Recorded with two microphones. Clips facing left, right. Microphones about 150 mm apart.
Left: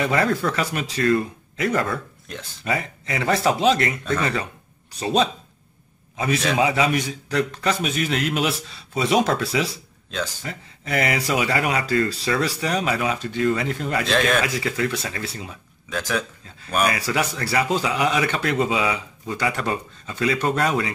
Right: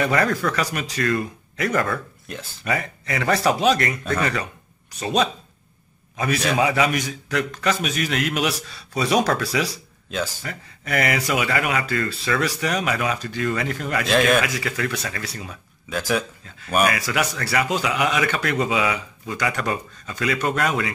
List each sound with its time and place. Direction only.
0.0 s speech: 25° left (ahead or behind)
4.0 s speech: 10° right (ahead or behind)
5.0 s speech: 25° left (ahead or behind)
14.0 s speech: 10° right (ahead or behind)
14.4 s speech: 30° left (ahead or behind)
15.9 s speech: 10° right (ahead or behind)
16.9 s speech: 30° left (ahead or behind)